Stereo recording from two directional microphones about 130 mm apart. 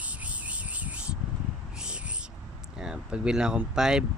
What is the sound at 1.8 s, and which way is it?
Whispering, 5° right (ahead or behind).